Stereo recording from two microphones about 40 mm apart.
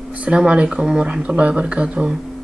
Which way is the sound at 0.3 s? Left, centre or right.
Right.